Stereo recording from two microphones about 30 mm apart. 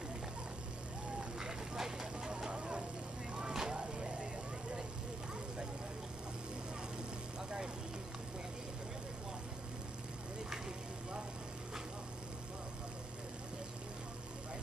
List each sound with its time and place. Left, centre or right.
1.4 s vehicle: centre